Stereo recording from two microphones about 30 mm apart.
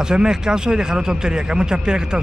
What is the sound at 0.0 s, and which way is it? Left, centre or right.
A man's voice, right.